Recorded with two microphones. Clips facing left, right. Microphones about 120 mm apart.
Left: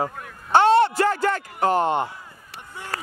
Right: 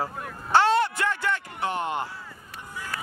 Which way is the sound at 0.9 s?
40° left (ahead or behind).